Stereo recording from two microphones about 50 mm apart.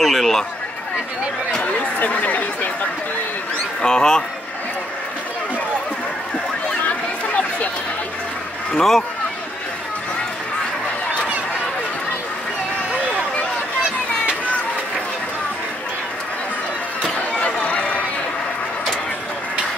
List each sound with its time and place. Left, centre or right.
0.0 s a man's voice: centre
1.6 s speech: left
3.8 s a man's voice: centre
8.7 s a man's voice: centre
17.0 s a sound: left